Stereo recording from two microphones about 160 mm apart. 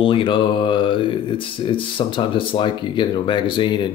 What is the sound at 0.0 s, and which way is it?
Speech, 30° left (ahead or behind).